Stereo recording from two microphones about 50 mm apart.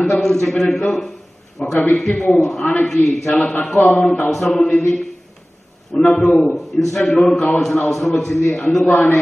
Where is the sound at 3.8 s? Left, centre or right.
Left.